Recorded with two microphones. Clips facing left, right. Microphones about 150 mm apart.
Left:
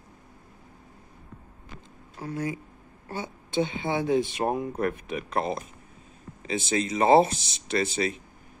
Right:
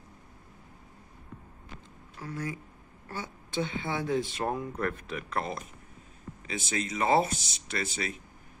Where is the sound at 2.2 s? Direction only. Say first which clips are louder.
Left 5 dB; 25° left (ahead or behind).